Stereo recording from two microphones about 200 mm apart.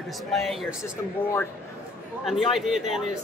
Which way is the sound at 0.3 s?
Centre (ahead or behind).